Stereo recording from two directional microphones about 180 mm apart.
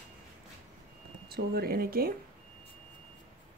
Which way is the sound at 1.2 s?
60° right (ahead or behind).